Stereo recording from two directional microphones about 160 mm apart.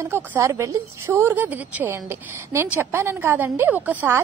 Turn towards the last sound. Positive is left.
turn(degrees=-10)  # may be behind; listen again after turning